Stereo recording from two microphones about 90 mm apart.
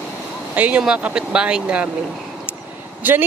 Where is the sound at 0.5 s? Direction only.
15° right (ahead or behind).